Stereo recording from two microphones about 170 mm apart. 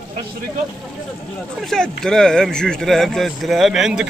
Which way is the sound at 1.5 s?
Centre (ahead or behind).